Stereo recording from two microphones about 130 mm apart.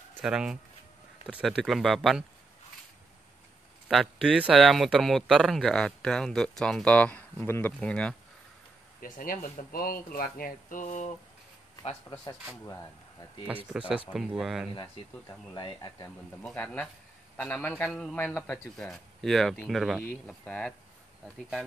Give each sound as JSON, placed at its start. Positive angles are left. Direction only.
{"t": 0.2, "sound": "speech", "side_deg": -5}
{"t": 3.9, "sound": "speech", "side_deg": 0}
{"t": 9.0, "sound": "speech", "side_deg": 90}
{"t": 13.7, "sound": "speech", "side_deg": -10}
{"t": 15.5, "sound": "speech", "side_deg": 30}
{"t": 16.5, "sound": "a man's voice", "side_deg": 15}
{"t": 18.8, "sound": "speech", "side_deg": 5}
{"t": 20.0, "sound": "a man's voice", "side_deg": 10}